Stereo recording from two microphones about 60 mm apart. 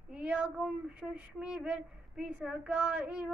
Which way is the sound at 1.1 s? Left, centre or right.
Centre.